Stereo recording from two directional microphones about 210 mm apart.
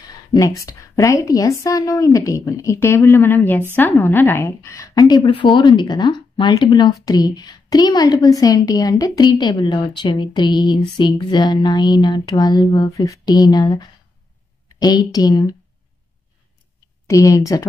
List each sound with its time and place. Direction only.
0.0 s a woman's voice: 15° left (ahead or behind)
17.1 s a woman's voice: 15° left (ahead or behind)